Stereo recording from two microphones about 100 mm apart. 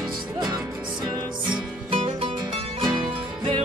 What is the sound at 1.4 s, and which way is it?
Music, 60° right (ahead or behind).